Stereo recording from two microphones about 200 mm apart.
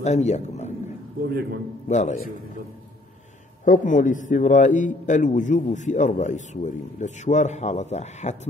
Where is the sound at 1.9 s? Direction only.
35° left (ahead or behind).